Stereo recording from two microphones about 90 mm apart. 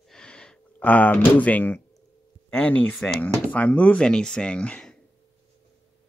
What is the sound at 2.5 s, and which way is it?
Speech, 15° left (ahead or behind).